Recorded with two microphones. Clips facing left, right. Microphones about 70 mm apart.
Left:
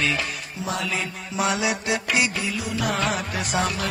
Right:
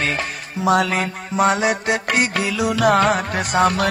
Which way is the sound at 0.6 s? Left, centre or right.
Right.